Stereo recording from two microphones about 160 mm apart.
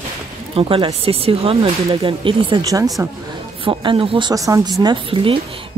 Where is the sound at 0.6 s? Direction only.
35° right (ahead or behind).